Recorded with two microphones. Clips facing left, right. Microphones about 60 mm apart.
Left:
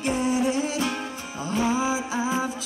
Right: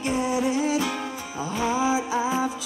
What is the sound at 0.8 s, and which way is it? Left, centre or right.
Music, left.